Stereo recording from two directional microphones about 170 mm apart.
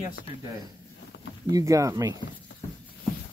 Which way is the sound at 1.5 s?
20° right (ahead or behind).